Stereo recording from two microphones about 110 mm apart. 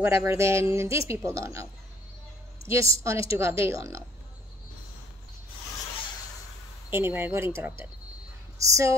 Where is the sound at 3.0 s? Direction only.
25° right (ahead or behind).